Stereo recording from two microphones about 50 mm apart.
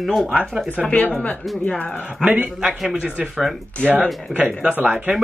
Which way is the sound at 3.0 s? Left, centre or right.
Centre.